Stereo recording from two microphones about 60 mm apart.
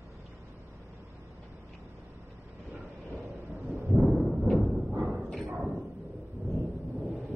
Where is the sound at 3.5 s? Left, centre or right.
Right.